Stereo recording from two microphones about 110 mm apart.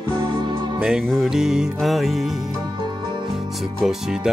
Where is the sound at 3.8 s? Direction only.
5° right (ahead or behind).